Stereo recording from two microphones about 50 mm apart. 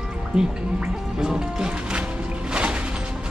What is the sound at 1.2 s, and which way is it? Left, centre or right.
Music, centre.